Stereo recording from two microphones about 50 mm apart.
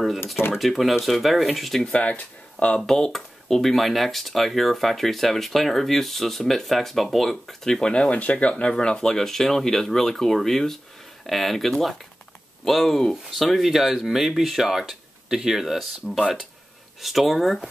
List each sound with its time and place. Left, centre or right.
0.6 s speech: centre
1.9 s speech: left
2.8 s speech: centre